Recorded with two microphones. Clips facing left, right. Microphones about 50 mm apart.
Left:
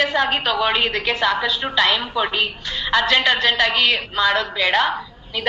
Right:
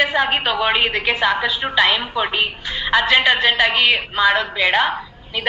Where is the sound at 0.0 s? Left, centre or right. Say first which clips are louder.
Right 1 dB; centre.